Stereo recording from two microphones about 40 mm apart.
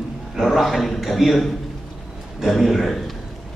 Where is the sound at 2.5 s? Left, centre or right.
Centre.